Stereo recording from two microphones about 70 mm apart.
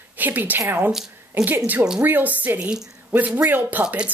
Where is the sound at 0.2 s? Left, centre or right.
Right.